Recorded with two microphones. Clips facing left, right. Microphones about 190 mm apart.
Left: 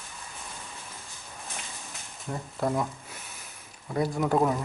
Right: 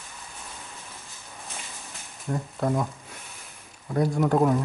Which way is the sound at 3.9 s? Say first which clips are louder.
Right 3 dB; centre (ahead or behind).